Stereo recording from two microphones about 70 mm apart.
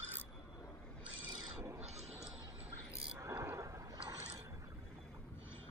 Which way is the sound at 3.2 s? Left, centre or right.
Right.